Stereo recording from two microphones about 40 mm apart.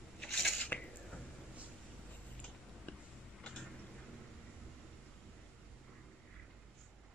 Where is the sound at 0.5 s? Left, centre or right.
Left.